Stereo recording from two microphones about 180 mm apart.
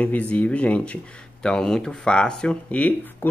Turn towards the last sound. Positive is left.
turn(degrees=10)  # may be behind; listen again after turning